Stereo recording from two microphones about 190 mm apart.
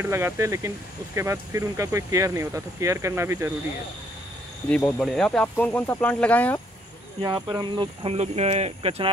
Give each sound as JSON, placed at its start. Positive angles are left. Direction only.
{"t": 0.0, "sound": "speech", "side_deg": -15}
{"t": 4.6, "sound": "speech", "side_deg": 5}
{"t": 7.2, "sound": "speech", "side_deg": -20}